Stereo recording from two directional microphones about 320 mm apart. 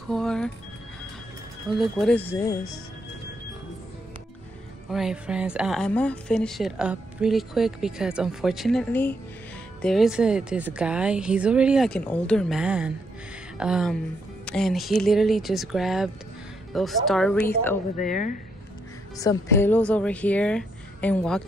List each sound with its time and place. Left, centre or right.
0.1 s speech: centre
1.7 s a woman's voice: centre
4.8 s a woman's voice: centre
17.9 s speech: left
19.1 s a woman's voice: centre